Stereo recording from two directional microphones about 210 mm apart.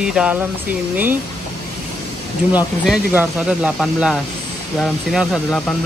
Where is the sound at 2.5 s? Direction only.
5° right (ahead or behind).